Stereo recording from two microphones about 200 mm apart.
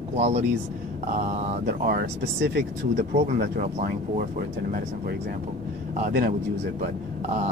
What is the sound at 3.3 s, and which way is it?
Speech, 45° right (ahead or behind).